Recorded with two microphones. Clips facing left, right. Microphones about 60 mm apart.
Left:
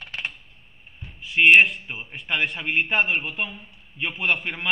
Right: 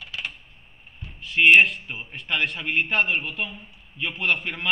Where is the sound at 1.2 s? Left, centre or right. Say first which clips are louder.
Left 1 dB; centre.